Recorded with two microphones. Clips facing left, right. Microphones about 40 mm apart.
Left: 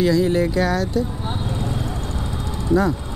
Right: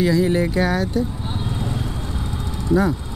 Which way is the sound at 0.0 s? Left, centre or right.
Centre.